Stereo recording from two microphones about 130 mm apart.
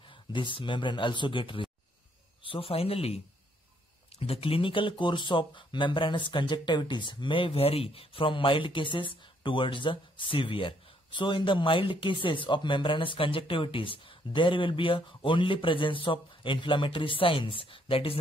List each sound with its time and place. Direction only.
0.0 s speech: 40° left (ahead or behind)